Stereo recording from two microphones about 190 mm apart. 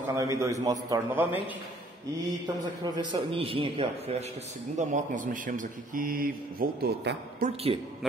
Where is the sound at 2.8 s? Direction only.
20° right (ahead or behind).